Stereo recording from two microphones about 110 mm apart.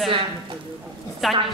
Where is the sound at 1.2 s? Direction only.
Centre (ahead or behind).